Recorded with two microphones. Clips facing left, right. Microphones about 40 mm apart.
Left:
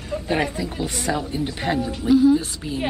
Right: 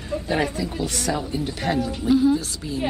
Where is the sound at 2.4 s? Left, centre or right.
Left.